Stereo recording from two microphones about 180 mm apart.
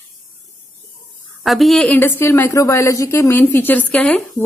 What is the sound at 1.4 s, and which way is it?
A woman's voice, centre (ahead or behind).